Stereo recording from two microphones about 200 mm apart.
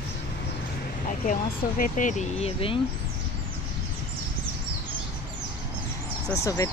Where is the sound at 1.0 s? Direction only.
40° left (ahead or behind).